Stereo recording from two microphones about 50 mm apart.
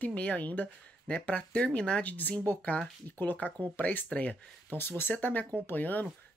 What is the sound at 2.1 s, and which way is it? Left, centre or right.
Speech, left.